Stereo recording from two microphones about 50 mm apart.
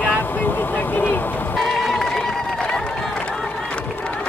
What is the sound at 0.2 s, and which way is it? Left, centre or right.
Vehicle, left.